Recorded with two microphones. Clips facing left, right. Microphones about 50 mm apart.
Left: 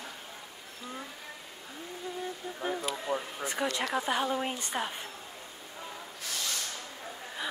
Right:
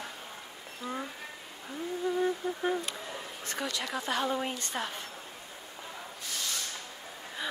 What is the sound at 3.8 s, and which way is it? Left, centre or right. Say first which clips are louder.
Speech: left 2 dB; centre.